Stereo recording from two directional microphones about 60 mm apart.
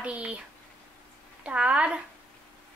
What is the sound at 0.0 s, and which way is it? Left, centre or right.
Speech, right.